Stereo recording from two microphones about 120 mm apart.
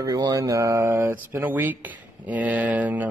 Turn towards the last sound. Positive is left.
turn(degrees=-15)  # may be behind; listen again after turning